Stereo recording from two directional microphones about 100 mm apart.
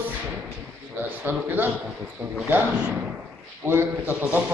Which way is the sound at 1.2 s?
20° right (ahead or behind).